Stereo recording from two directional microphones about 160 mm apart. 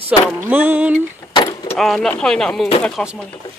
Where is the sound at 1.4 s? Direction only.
20° left (ahead or behind).